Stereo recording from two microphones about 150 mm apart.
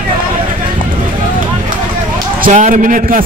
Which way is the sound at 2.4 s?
60° right (ahead or behind).